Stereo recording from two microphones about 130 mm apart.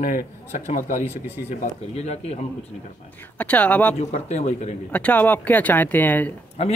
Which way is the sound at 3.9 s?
60° left (ahead or behind).